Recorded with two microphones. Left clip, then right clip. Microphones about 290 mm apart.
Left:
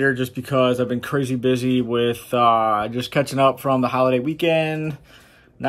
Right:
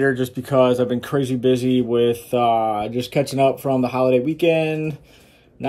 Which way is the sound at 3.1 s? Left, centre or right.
Left.